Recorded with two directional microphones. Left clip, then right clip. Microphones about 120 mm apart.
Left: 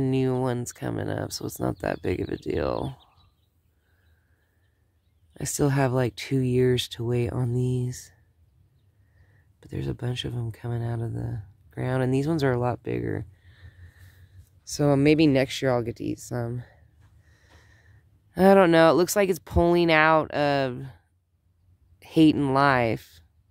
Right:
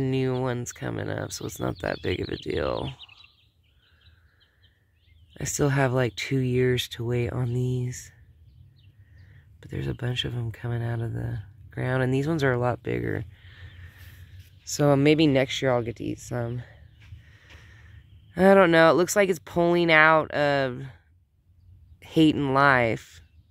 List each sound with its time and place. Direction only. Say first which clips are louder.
0.0 s speech: left 1 dB; 35° left (ahead or behind)
5.3 s speech: even; 30° left (ahead or behind)
9.6 s speech: even; 25° left (ahead or behind)
15.1 s speech: even; 30° left (ahead or behind)
17.3 s snort: right 5 dB; 20° left (ahead or behind)
18.3 s speech: even; 30° left (ahead or behind)
22.0 s speech: left 1 dB; 25° left (ahead or behind)